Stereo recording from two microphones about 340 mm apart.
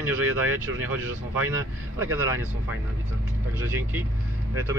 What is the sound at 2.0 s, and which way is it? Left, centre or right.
Speech, centre.